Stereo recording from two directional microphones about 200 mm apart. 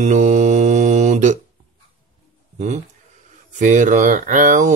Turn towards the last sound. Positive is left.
turn(degrees=-40)  # may be behind; listen again after turning